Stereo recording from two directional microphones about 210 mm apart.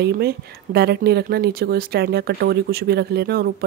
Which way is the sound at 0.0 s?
50° right (ahead or behind).